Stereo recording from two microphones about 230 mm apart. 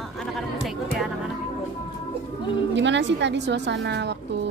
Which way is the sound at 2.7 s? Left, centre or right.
Right.